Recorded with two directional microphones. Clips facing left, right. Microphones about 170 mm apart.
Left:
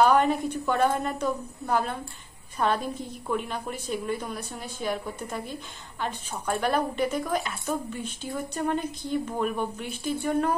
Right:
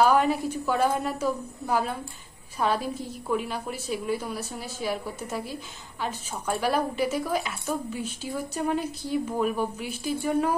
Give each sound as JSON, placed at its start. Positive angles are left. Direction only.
{"t": 0.0, "sound": "a woman's voice", "side_deg": -5}